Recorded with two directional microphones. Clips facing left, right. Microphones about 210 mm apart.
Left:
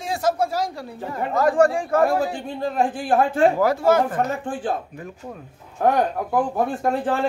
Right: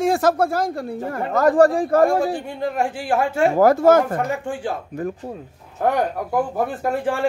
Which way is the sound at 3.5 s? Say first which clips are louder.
Right 5 dB; 45° right (ahead or behind).